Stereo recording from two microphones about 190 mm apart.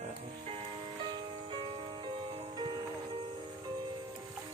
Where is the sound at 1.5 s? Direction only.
25° right (ahead or behind).